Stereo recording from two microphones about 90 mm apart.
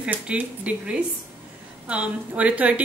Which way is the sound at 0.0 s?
15° right (ahead or behind).